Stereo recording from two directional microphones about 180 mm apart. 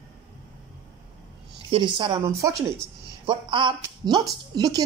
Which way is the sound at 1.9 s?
25° right (ahead or behind).